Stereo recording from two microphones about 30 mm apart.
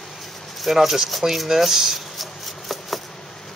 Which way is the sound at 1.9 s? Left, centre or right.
Centre.